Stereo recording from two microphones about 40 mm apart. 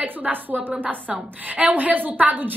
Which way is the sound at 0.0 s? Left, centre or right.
Right.